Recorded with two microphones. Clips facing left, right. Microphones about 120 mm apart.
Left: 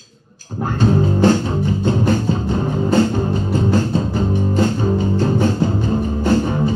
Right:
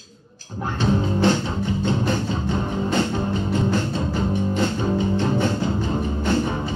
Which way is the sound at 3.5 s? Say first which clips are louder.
Left 7 dB; 40° left (ahead or behind).